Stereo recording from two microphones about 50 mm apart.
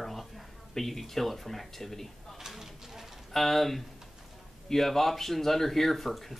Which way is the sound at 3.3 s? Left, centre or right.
Centre.